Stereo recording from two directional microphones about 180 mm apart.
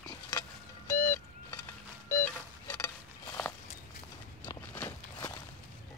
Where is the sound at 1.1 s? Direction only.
20° left (ahead or behind).